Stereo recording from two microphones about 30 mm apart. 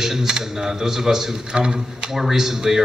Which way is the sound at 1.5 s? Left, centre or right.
Right.